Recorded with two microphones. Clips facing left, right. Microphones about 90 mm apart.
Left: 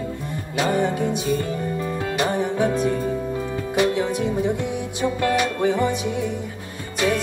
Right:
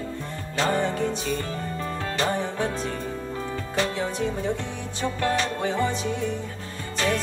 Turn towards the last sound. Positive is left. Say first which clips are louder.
# left 3 dB
turn(degrees=15)  # may be behind; listen again after turning